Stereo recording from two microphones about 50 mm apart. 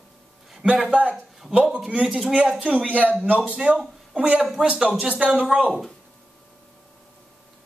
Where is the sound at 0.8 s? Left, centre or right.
Right.